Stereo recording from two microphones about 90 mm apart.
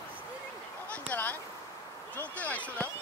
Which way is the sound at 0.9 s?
15° left (ahead or behind).